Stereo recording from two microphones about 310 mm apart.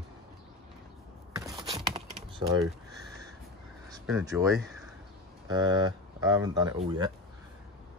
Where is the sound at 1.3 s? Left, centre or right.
Centre.